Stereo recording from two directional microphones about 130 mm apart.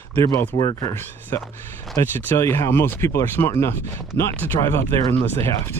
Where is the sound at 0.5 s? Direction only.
30° left (ahead or behind).